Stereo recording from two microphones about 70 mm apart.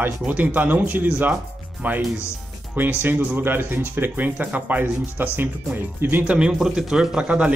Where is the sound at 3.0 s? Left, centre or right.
Right.